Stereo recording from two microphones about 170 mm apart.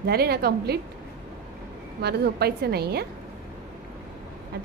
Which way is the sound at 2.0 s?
70° right (ahead or behind).